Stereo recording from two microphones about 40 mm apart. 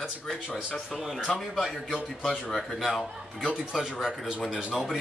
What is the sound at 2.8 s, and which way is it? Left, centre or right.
Speech, centre.